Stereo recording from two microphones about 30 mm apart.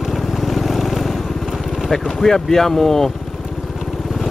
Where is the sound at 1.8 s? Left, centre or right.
Centre.